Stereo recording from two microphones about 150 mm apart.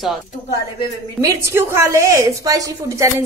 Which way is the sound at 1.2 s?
20° right (ahead or behind).